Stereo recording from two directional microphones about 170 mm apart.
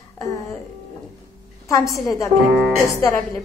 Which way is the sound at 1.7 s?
20° left (ahead or behind).